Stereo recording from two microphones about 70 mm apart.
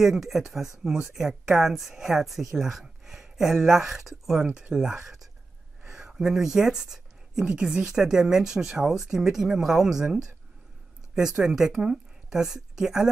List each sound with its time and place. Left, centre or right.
0.0 s speech: centre
4.5 s speech: centre
4.7 s speech: centre
11.1 s speech: centre